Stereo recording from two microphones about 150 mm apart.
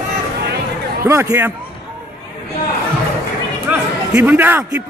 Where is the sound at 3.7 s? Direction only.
10° right (ahead or behind).